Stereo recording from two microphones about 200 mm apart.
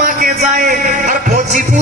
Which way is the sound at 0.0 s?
40° right (ahead or behind).